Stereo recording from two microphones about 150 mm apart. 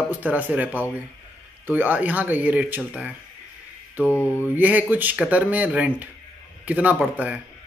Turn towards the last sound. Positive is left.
turn(degrees=-5)  # may be behind; listen again after turning